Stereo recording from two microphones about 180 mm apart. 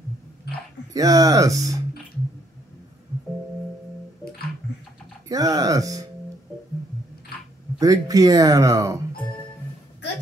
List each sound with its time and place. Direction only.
0.9 s speech: 20° right (ahead or behind)
5.3 s speech: 20° right (ahead or behind)
7.8 s speech: 20° right (ahead or behind)